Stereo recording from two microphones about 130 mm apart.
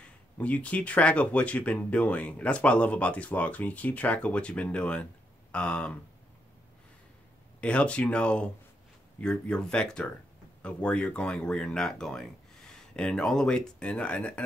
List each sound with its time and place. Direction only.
0.4 s speech: 10° left (ahead or behind)
7.6 s speech: 10° left (ahead or behind)